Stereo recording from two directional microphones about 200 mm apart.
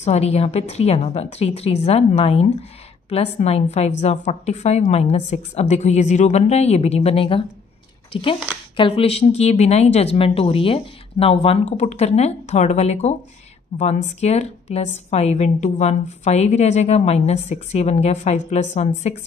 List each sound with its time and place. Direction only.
0.0 s a woman's voice: 30° left (ahead or behind)